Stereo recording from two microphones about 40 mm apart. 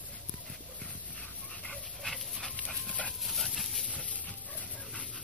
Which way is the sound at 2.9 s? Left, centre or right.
Left.